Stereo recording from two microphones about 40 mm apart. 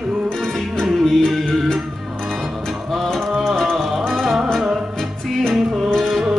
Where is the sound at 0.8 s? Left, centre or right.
Centre.